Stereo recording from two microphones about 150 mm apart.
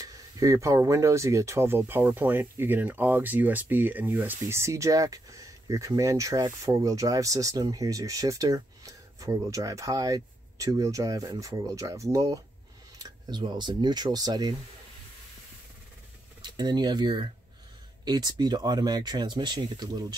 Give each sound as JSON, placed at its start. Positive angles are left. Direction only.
{"t": 0.0, "sound": "speech", "side_deg": -25}
{"t": 16.4, "sound": "speech", "side_deg": -30}